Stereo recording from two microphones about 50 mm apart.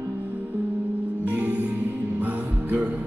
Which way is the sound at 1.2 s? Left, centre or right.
Right.